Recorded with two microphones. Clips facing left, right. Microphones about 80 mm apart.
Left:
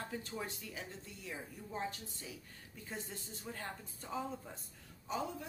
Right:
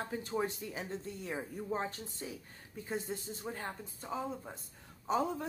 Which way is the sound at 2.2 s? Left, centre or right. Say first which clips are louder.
Right 7 dB; right.